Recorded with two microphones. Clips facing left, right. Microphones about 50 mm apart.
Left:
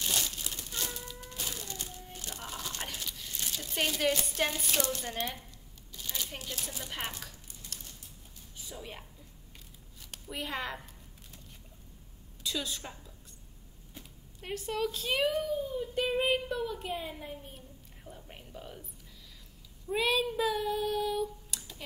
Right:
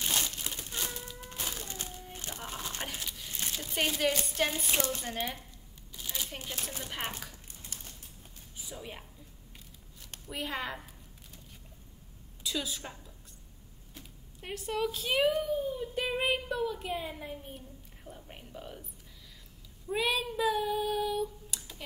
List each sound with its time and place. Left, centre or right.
0.0 s crumpling: right
1.6 s a sound: right
3.7 s a sound: centre
4.6 s speech: right
4.9 s speech: centre
5.9 s a sound: centre
6.4 s speech: right
8.6 s a woman's voice: centre
10.1 s speech: centre
12.4 s a woman's voice: centre
19.9 s child singing: centre